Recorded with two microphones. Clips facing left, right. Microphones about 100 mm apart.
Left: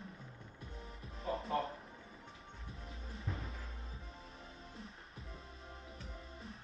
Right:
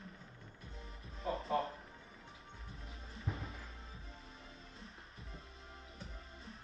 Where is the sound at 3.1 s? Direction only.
Centre (ahead or behind).